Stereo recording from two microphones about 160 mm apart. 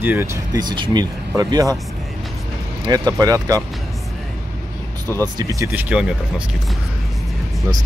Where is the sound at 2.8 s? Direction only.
25° right (ahead or behind).